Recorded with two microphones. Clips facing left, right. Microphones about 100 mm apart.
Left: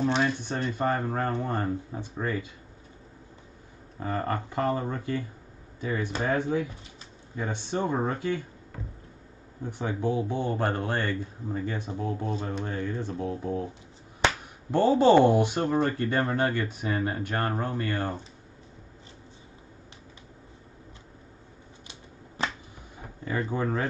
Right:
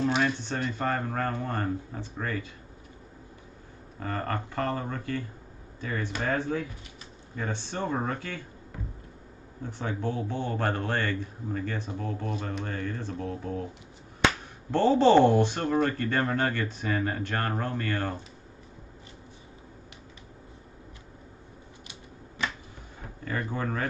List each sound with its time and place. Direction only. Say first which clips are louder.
0.2 s speech: left 1 dB; 15° left (ahead or behind)
4.0 s speech: left 2 dB; 15° left (ahead or behind)
9.7 s speech: left 3 dB; 15° left (ahead or behind)
14.7 s speech: left 1 dB; 10° left (ahead or behind)
23.2 s speech: left 3 dB; 15° left (ahead or behind)